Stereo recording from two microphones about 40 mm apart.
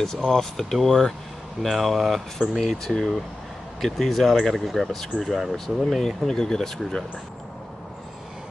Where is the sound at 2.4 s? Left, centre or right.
Centre.